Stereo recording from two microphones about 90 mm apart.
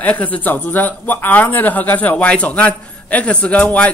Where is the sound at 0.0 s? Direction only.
15° left (ahead or behind).